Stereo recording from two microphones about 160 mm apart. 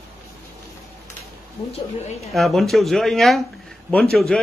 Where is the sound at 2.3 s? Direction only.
Centre (ahead or behind).